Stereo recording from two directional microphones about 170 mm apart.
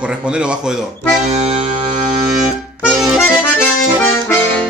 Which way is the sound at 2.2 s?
5° right (ahead or behind).